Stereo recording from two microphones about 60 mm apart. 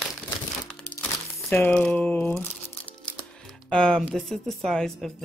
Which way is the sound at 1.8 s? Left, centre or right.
Centre.